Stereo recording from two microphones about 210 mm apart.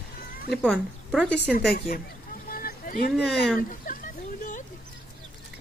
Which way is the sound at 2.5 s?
45° left (ahead or behind).